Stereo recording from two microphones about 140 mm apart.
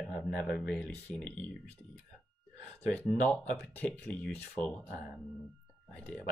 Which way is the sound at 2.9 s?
5° left (ahead or behind).